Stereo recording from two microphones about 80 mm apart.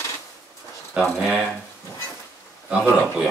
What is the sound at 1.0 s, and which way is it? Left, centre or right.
Speech, centre.